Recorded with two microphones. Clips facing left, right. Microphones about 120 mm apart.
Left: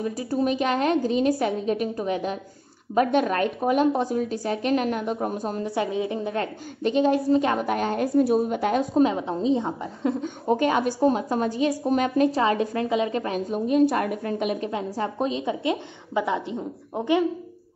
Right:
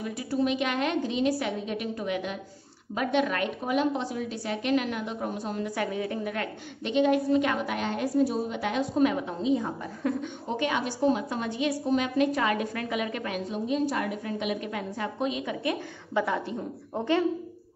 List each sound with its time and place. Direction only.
0.0 s a woman's voice: 40° left (ahead or behind)
5.8 s a woman's voice: 20° left (ahead or behind); by 9.0 s 45° left (ahead or behind)
9.0 s a woman's voice: 30° left (ahead or behind)
10.2 s a woman's voice: 40° left (ahead or behind)
12.3 s a woman's voice: 30° left (ahead or behind)
13.5 s a woman's voice: 55° left (ahead or behind)
14.7 s a woman's voice: 25° left (ahead or behind)